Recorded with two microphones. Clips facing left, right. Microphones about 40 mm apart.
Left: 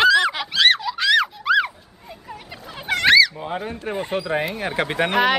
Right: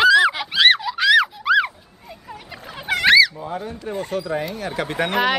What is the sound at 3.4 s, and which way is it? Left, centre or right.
Speech, left.